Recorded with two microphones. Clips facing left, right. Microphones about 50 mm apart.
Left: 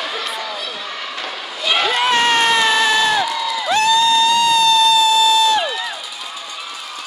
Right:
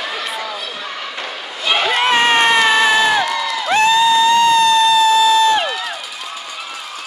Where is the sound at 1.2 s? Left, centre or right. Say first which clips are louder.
Even; centre.